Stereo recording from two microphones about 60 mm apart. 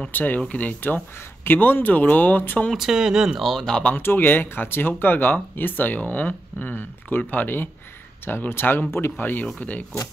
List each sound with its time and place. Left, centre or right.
0.1 s speech: left
2.7 s speech: centre
3.4 s speech: centre
3.9 s speech: left